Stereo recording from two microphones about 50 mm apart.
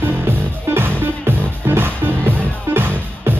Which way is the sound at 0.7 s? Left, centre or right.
Right.